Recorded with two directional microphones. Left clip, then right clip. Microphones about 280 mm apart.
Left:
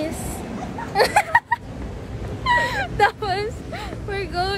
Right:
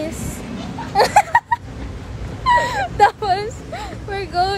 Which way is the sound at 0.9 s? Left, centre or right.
Centre.